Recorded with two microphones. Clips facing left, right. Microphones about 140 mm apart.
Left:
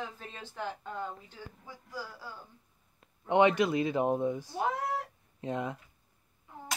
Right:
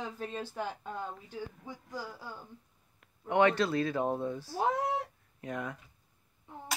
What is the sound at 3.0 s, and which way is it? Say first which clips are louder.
Speech: left 2 dB; 20° left (ahead or behind).